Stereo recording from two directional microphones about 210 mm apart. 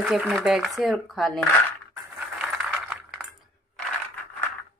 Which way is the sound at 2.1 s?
5° right (ahead or behind).